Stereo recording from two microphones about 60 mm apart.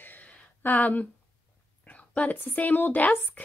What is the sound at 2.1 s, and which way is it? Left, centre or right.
A woman's voice, left.